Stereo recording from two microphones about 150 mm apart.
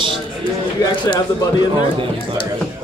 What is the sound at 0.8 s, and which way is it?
Speech, 25° left (ahead or behind).